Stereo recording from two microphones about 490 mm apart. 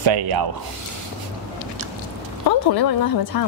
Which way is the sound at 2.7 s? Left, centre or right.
Left.